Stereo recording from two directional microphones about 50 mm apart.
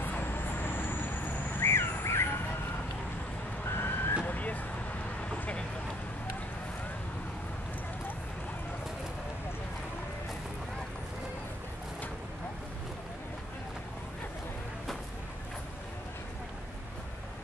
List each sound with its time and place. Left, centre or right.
0.2 s vehicle: left
1.6 s squawk: left
3.6 s vehicle: left
4.3 s vehicle: left